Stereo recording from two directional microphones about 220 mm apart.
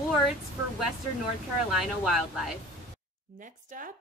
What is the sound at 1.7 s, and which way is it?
Speech, centre (ahead or behind).